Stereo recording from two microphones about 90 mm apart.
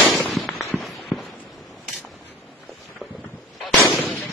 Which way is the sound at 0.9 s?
Centre (ahead or behind).